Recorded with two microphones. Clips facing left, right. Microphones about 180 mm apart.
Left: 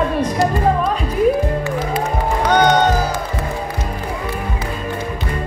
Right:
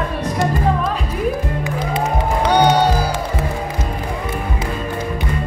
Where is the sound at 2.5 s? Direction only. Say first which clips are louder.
Even; 10° right (ahead or behind).